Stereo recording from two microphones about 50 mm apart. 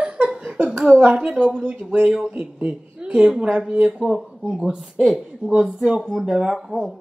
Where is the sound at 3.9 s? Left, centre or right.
Centre.